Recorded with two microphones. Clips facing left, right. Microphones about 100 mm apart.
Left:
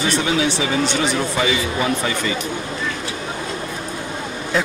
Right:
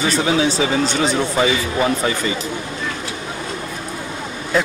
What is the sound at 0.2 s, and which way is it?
Speech, 30° right (ahead or behind).